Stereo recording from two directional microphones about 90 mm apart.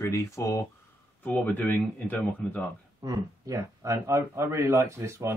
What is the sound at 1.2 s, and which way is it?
Speech, 20° left (ahead or behind).